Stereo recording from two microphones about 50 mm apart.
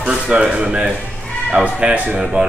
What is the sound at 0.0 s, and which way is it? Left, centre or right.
Speech, centre.